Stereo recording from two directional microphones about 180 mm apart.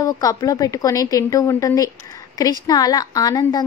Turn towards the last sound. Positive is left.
turn(degrees=20)  # may be behind; listen again after turning